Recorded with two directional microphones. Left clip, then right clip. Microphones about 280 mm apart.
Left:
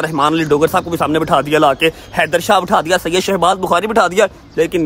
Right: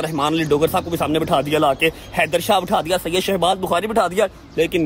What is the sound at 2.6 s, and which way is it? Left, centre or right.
Speech, left.